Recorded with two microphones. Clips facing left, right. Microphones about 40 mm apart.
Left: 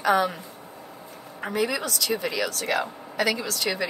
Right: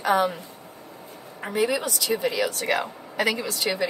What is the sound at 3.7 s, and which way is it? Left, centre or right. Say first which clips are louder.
Speech: right 1 dB; centre.